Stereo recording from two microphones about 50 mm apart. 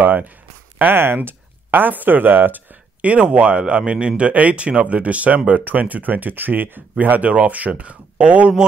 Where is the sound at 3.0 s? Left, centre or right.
Right.